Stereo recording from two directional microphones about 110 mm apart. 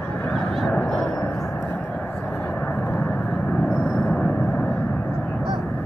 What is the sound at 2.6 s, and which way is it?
Vehicle, 20° left (ahead or behind).